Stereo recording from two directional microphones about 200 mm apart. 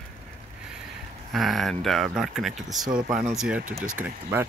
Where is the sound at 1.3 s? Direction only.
Centre (ahead or behind).